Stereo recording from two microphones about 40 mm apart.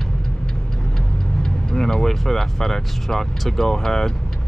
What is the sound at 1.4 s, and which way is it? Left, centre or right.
Speech, centre.